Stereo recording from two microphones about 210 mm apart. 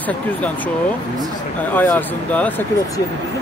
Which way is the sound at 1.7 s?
10° left (ahead or behind).